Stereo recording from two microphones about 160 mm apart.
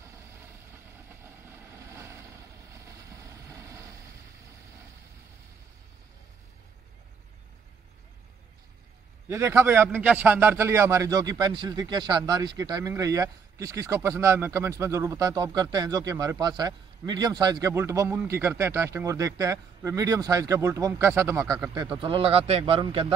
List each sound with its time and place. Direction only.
0.0 s vehicle: 15° right (ahead or behind)
9.3 s a man's voice: 15° right (ahead or behind)
21.9 s a man's voice: 35° right (ahead or behind)